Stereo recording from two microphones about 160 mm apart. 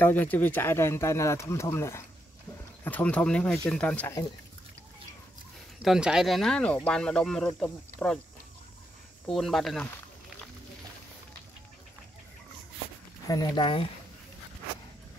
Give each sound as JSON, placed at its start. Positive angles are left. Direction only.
{"t": 0.0, "sound": "speech", "side_deg": 10}
{"t": 5.8, "sound": "speech", "side_deg": -5}
{"t": 9.3, "sound": "speech", "side_deg": 0}
{"t": 13.3, "sound": "speech", "side_deg": 25}